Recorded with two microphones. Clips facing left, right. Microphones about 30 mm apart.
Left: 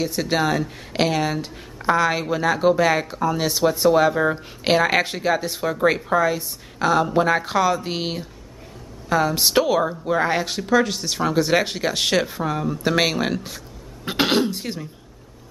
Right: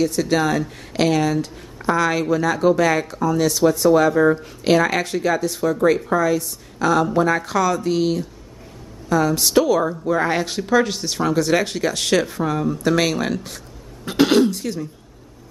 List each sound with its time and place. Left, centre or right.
0.0 s speech: centre
10.2 s speech: centre
11.3 s speech: centre
12.8 s speech: centre